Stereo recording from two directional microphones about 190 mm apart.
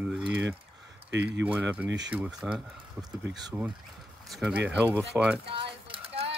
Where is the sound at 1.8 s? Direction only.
70° right (ahead or behind).